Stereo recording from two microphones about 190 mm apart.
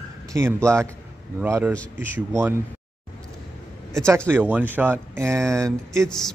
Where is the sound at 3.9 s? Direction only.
15° right (ahead or behind).